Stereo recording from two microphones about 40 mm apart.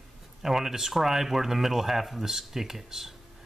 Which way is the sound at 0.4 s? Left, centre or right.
Centre.